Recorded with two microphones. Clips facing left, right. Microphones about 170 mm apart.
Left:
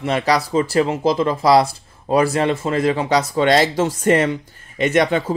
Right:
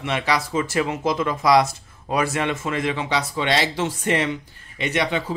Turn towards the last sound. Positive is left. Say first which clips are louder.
# left 7 dB
turn(degrees=45)  # may be behind; listen again after turning